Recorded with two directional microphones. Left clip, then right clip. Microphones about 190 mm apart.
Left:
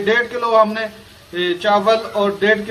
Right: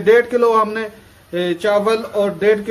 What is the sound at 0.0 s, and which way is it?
A man's voice, 50° right (ahead or behind).